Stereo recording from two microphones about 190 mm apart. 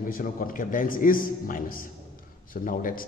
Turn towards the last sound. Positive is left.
turn(degrees=45)  # may be behind; listen again after turning